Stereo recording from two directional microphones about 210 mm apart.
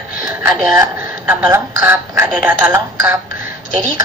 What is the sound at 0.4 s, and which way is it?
A woman's voice, 10° right (ahead or behind).